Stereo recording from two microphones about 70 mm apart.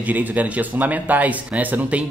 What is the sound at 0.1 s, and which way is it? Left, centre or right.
Speech, right.